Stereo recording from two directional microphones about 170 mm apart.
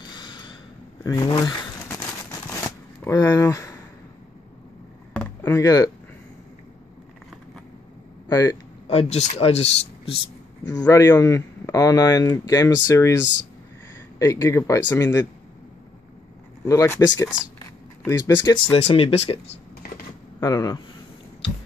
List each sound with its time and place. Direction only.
0.1 s a sound: 25° left (ahead or behind)
1.0 s crumpling: 25° left (ahead or behind)
5.1 s a sound: 10° left (ahead or behind)
8.3 s speech: 20° left (ahead or behind)
8.8 s speech: 35° left (ahead or behind)
10.7 s speech: 20° left (ahead or behind)
14.1 s speech: 20° left (ahead or behind)
16.6 s speech: 15° left (ahead or behind); by 19.6 s 35° left (ahead or behind)
20.3 s speech: 20° left (ahead or behind)